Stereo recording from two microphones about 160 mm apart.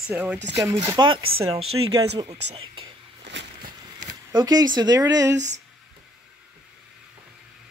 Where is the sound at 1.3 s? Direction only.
40° right (ahead or behind).